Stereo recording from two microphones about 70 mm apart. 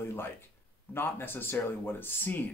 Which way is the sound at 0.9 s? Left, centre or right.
Left.